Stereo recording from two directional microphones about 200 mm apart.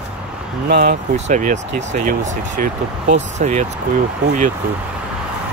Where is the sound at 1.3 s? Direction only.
40° right (ahead or behind).